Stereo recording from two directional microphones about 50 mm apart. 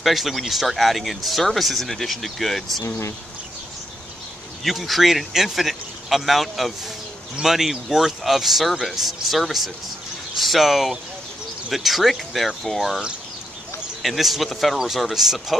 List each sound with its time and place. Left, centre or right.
0.0 s speech: centre
4.6 s speech: centre
14.0 s speech: centre